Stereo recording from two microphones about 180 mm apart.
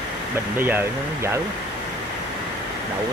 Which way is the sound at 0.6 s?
10° right (ahead or behind).